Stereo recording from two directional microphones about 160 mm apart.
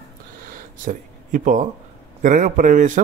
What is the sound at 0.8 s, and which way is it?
A man's voice, 55° right (ahead or behind).